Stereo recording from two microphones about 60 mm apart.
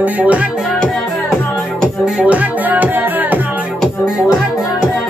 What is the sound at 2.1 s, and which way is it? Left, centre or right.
Music, right.